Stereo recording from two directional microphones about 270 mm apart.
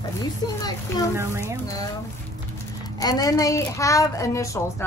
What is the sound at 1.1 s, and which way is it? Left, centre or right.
Speech, centre.